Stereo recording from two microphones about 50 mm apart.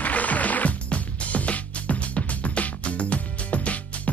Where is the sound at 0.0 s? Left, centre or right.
Left.